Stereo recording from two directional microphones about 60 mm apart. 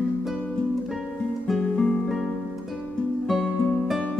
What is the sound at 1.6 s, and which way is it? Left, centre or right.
Music, centre.